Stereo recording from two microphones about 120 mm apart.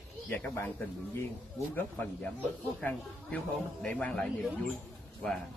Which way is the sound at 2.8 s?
5° left (ahead or behind).